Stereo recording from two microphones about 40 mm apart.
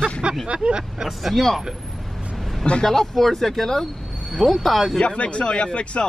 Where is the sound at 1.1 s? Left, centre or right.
Centre.